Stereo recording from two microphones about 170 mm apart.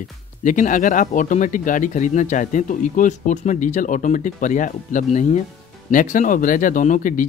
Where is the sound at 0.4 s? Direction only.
50° left (ahead or behind).